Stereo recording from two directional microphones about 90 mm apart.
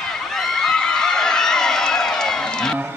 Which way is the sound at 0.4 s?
5° left (ahead or behind).